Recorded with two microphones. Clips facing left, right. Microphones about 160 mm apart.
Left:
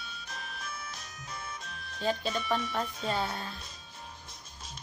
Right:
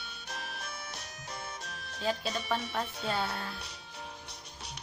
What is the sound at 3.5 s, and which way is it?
Music, 70° right (ahead or behind).